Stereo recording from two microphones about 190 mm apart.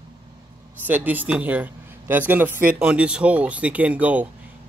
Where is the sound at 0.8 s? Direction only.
10° right (ahead or behind).